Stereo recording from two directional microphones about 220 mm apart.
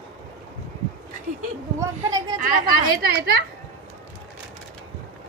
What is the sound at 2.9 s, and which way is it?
Speech, 45° right (ahead or behind).